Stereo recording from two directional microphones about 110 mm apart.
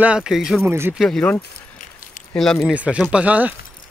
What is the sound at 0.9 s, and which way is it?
Speech, 5° left (ahead or behind).